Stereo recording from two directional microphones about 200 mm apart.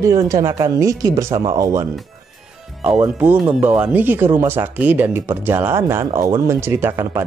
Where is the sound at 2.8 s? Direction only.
5° right (ahead or behind).